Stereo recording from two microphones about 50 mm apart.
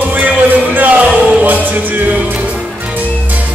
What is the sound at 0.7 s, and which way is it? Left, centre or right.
Music, right.